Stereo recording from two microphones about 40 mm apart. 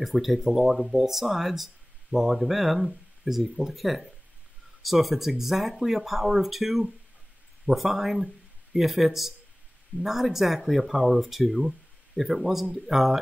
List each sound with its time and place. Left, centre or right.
0.0 s speech: centre